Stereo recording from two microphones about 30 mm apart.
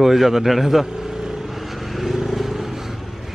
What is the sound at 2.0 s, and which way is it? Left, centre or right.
Vehicle, centre.